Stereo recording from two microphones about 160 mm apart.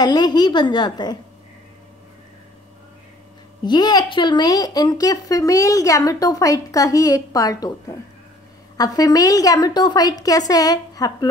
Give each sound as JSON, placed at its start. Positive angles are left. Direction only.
{"t": 0.0, "sound": "a woman's voice", "side_deg": 25}
{"t": 3.6, "sound": "a woman's voice", "side_deg": 25}